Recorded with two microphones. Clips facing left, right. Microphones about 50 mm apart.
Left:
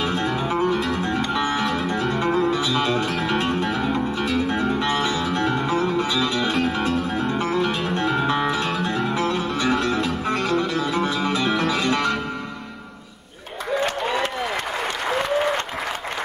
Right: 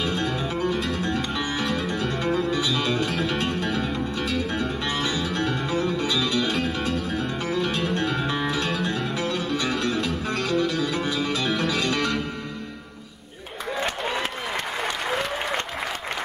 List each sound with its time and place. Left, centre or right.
0.0 s music: left